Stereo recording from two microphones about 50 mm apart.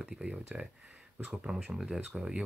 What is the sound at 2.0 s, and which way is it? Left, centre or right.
Speech, right.